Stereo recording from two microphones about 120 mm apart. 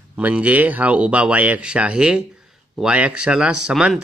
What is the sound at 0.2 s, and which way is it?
Speech, 10° right (ahead or behind).